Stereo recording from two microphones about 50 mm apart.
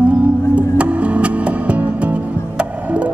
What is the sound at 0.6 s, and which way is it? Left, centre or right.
Music, right.